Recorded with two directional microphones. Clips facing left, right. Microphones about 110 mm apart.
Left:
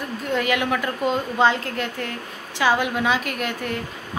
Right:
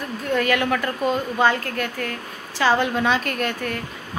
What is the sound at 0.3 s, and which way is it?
A woman's voice, 15° left (ahead or behind).